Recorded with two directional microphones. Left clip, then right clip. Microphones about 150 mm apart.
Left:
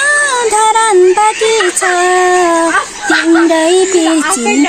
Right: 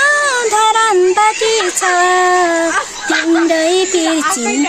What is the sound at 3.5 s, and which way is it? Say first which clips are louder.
Music: left 4 dB; 40° right (ahead or behind).